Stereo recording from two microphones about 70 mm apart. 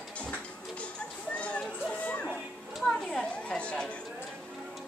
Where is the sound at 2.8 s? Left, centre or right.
Centre.